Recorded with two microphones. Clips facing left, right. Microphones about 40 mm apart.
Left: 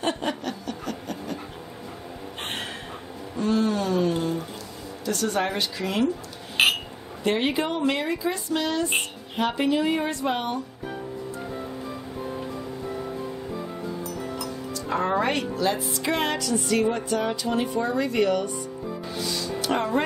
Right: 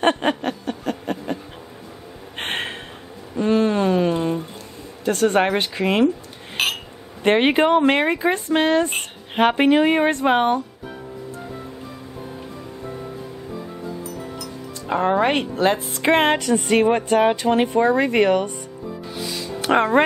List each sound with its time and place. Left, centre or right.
0.0 s a sound: right
5.0 s a woman's voice: right
6.6 s a sound: centre
7.2 s speech: right
14.9 s a woman's voice: right
19.6 s speech: right